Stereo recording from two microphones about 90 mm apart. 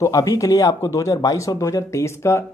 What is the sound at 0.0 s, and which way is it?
Speech, 40° left (ahead or behind).